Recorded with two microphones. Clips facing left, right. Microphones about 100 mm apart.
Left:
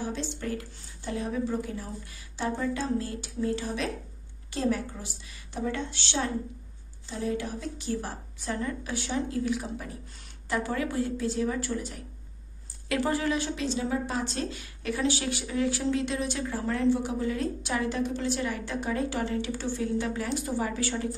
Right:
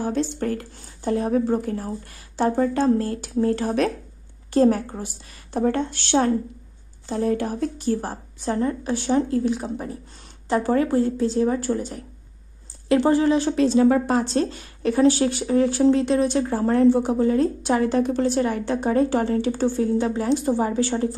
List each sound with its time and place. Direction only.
0.0 s a woman's voice: 50° right (ahead or behind); by 13.5 s 30° right (ahead or behind)
13.5 s a woman's voice: 45° right (ahead or behind)
14.2 s speech: 35° right (ahead or behind)